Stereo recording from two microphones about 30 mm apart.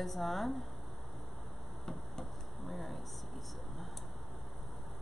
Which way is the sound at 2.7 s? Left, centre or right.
Centre.